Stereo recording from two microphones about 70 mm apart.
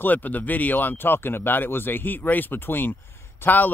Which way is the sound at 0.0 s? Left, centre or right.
Left.